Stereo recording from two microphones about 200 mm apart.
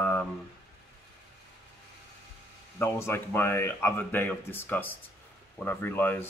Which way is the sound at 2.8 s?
10° left (ahead or behind).